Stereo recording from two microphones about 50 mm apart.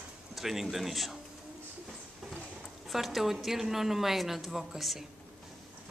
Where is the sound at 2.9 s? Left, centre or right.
Centre.